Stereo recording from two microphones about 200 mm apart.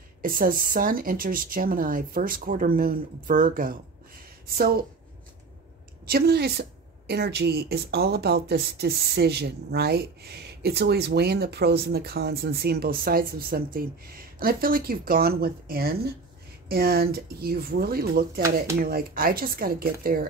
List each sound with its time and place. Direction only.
0.2 s a woman's voice: 45° right (ahead or behind)
6.0 s a woman's voice: 50° right (ahead or behind)